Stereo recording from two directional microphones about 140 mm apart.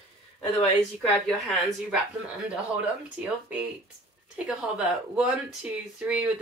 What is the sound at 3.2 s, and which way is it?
A woman's voice, 10° right (ahead or behind).